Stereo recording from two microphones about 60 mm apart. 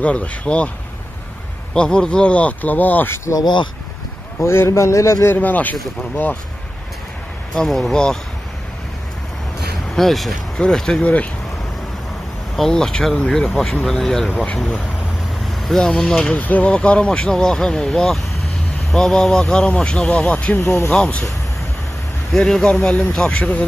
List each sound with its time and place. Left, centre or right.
0.0 s speech: left
1.7 s speech: centre; by 3.2 s left
4.4 s a man's voice: left
5.3 s speech: left
7.5 s speech: centre
9.9 s speech: centre
12.5 s speech: centre
14.3 s speech: left
15.4 s speech: centre
16.3 s speech: left
20.5 s a man's voice: left
22.3 s speech: centre